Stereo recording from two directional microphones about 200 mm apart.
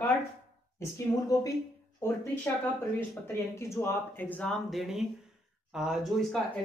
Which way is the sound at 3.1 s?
15° left (ahead or behind).